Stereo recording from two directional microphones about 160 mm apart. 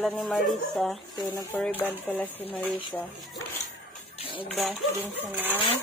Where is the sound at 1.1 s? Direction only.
20° left (ahead or behind).